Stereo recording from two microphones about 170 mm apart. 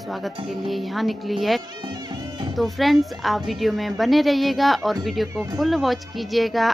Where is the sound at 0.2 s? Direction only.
Centre (ahead or behind).